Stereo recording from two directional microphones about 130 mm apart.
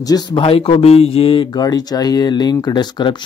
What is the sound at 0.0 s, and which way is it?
Speech, 30° left (ahead or behind).